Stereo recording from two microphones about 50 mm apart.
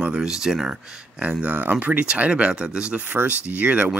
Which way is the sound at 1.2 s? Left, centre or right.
Right.